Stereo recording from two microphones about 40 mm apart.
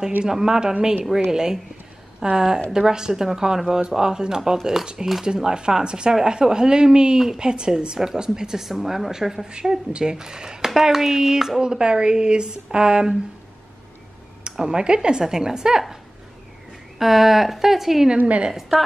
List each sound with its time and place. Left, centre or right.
0.3 s a woman's voice: centre
9.5 s a woman's voice: right
14.4 s speech: right
17.0 s speech: centre
18.1 s a woman's voice: right
18.5 s a woman's voice: centre